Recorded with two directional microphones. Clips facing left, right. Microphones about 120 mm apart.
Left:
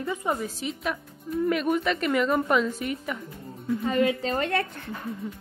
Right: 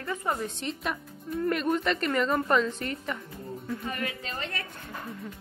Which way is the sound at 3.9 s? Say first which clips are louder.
Left 13 dB; 25° left (ahead or behind).